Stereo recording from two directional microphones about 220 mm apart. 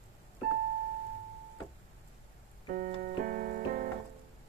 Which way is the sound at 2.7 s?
40° right (ahead or behind).